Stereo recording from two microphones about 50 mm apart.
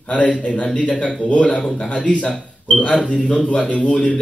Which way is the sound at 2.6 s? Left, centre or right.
Centre.